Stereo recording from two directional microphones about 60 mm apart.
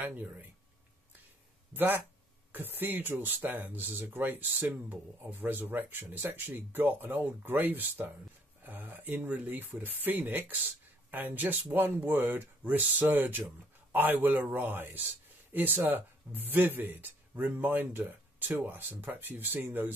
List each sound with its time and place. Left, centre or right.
0.0 s speech: right
1.7 s speech: right